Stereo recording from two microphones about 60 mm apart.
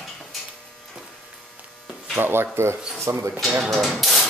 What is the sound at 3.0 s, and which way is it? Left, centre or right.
Speech, right.